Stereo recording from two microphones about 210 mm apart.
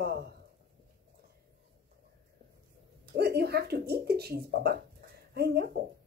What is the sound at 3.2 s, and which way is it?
Speech, 50° right (ahead or behind).